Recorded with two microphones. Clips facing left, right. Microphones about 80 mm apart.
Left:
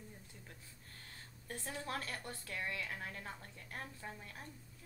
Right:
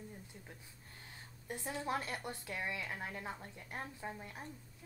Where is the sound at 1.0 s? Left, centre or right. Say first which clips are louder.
Right 4 dB; centre.